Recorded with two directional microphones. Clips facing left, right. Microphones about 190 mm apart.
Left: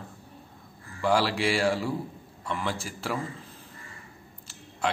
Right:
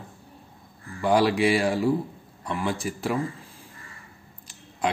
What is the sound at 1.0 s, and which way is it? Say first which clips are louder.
Speech: right 4 dB; 15° right (ahead or behind).